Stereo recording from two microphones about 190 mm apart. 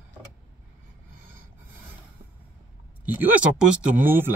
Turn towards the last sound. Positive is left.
turn(degrees=-10)  # may be behind; listen again after turning